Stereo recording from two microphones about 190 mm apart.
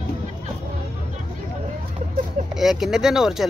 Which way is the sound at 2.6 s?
Centre (ahead or behind).